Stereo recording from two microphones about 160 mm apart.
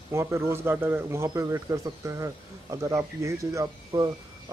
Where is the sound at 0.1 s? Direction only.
15° right (ahead or behind).